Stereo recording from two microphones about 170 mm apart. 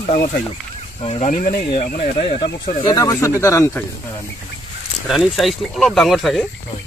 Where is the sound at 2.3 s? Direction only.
30° left (ahead or behind).